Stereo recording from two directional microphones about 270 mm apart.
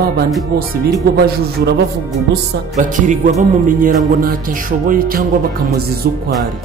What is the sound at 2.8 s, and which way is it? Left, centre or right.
Speech, right.